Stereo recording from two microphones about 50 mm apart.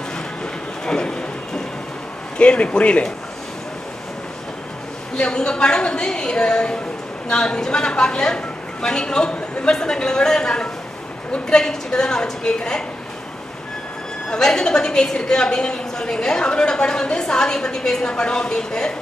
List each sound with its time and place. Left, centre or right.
0.8 s speech: centre
2.3 s speech: left
5.1 s a woman's voice: centre
14.3 s a woman's voice: centre